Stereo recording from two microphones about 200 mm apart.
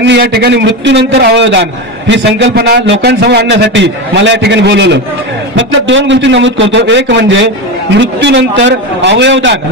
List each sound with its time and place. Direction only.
0.0 s a man's voice: 55° right (ahead or behind)